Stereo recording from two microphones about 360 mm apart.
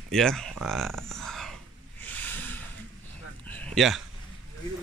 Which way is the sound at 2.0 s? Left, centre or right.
Centre.